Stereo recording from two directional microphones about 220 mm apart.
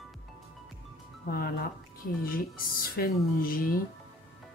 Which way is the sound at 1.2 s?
40° left (ahead or behind).